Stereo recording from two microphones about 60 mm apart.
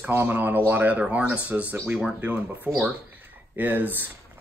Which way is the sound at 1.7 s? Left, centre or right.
Right.